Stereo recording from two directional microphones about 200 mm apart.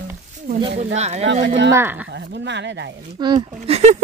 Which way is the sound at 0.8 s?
35° right (ahead or behind).